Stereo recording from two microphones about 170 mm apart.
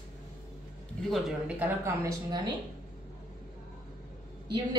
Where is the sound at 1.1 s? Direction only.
10° right (ahead or behind).